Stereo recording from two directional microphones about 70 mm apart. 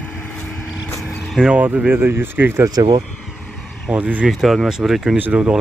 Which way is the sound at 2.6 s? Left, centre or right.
Right.